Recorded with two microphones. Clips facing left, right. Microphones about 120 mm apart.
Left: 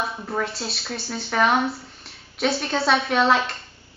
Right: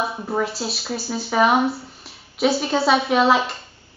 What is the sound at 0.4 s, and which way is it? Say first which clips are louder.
Speech: right 3 dB; centre (ahead or behind).